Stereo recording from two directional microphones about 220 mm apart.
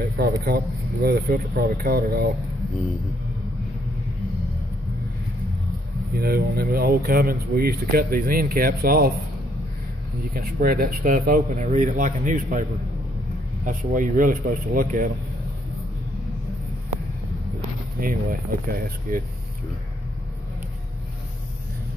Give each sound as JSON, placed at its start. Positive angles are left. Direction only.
{"t": 0.2, "sound": "a man's voice", "side_deg": -45}
{"t": 6.1, "sound": "speech", "side_deg": -45}
{"t": 10.3, "sound": "speech", "side_deg": -40}
{"t": 18.0, "sound": "speech", "side_deg": -40}